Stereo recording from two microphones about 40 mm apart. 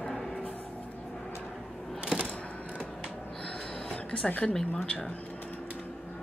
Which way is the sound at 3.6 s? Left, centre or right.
Left.